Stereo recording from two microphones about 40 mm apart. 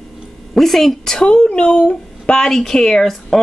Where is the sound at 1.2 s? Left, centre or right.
Left.